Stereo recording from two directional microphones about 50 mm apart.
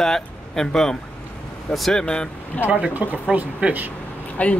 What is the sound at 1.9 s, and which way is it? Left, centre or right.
Speech, centre.